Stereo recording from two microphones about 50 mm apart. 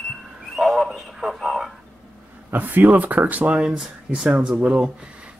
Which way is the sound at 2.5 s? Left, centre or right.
Right.